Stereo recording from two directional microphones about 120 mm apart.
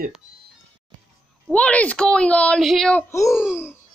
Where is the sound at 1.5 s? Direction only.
10° left (ahead or behind).